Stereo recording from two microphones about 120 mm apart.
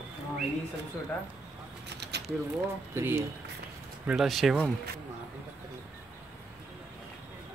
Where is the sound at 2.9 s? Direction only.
20° right (ahead or behind).